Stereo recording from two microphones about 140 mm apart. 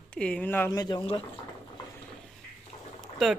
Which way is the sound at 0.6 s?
30° left (ahead or behind).